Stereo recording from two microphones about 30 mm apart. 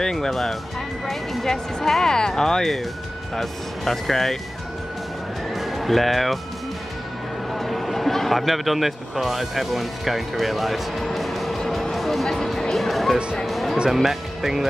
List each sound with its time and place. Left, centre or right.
0.0 s speech: centre
0.3 s speech: centre
5.5 s music: centre
7.5 s speech: centre
11.9 s music: centre
13.8 s speech: centre